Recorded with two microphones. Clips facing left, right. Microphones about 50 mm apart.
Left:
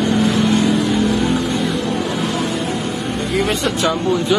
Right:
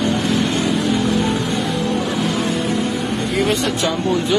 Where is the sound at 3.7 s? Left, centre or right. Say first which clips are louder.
Left 2 dB; centre.